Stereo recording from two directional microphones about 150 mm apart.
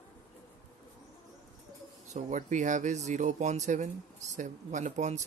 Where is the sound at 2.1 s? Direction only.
55° right (ahead or behind).